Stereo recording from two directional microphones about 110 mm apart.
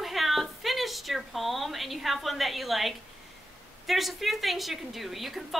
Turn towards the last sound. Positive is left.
turn(degrees=0)  # may be behind; listen again after turning